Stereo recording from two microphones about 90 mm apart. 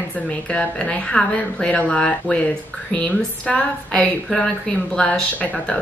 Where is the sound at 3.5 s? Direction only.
10° left (ahead or behind).